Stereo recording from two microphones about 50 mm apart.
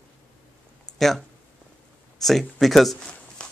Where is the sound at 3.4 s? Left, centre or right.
Left.